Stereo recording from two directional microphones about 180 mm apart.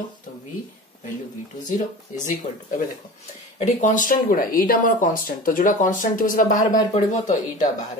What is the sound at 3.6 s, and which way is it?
Speech, 45° left (ahead or behind).